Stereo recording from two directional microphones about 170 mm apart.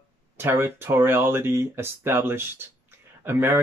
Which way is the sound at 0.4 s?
15° right (ahead or behind).